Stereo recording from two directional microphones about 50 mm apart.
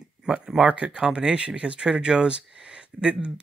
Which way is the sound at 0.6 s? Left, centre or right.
Right.